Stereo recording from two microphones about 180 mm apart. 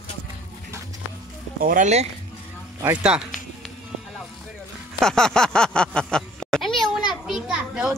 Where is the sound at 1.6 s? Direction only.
50° right (ahead or behind).